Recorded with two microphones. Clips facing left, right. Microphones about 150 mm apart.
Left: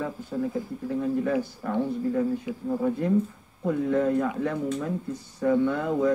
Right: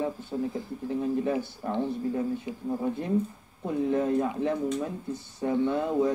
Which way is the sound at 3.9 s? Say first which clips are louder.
Left 2 dB; 30° right (ahead or behind).